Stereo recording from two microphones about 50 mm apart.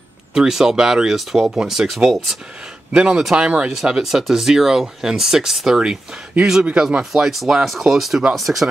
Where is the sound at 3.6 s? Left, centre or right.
Centre.